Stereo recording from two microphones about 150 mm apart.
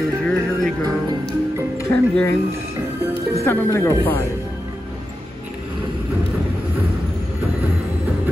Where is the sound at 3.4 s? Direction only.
15° left (ahead or behind).